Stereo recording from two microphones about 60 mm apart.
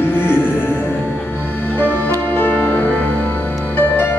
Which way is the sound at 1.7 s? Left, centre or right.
Left.